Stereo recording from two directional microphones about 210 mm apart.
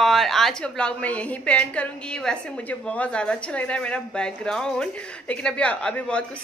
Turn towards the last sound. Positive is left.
turn(degrees=5)  # may be behind; listen again after turning